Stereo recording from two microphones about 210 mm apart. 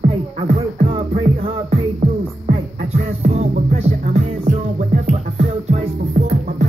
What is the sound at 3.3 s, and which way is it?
Music, 30° right (ahead or behind).